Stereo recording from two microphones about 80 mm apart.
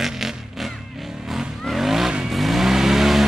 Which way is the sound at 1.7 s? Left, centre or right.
Centre.